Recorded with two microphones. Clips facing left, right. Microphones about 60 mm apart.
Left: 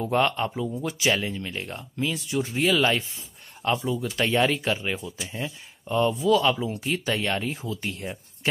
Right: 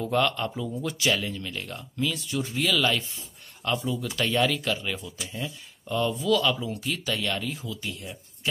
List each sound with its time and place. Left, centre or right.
0.0 s speech: left